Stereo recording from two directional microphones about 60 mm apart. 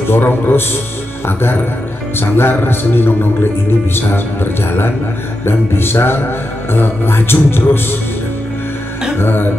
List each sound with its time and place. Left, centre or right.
0.1 s speech: left
5.4 s speech: left
9.2 s speech: left